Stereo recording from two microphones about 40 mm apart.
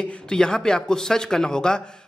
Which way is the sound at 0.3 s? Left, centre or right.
Centre.